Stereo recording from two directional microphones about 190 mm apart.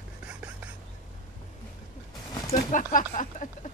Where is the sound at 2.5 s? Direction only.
45° left (ahead or behind).